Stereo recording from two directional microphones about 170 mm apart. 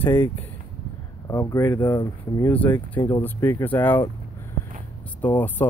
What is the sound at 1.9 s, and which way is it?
Speech, 25° left (ahead or behind).